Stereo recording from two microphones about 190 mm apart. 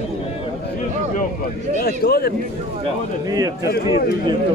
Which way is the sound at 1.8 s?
55° left (ahead or behind).